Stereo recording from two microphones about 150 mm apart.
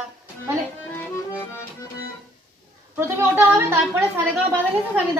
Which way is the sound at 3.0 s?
15° right (ahead or behind).